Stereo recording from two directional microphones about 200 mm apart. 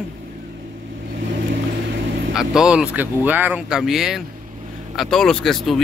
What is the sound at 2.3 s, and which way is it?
Speech, 5° right (ahead or behind).